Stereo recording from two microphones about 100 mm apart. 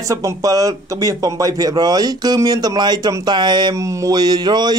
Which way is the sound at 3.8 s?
30° right (ahead or behind).